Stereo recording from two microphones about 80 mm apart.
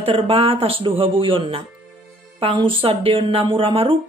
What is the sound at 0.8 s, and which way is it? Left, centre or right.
Speech, right.